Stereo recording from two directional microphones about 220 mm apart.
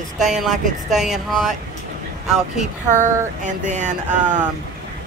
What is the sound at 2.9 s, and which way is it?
Speech, 35° right (ahead or behind).